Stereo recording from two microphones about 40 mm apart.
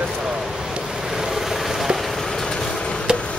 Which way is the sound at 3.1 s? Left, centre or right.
Centre.